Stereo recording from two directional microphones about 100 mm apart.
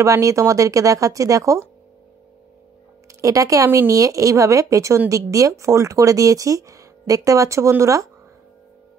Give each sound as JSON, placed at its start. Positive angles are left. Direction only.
{"t": 0.0, "sound": "speech", "side_deg": -30}
{"t": 3.2, "sound": "speech", "side_deg": -35}